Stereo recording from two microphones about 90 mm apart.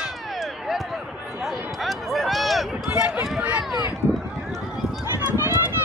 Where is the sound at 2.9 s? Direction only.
15° right (ahead or behind).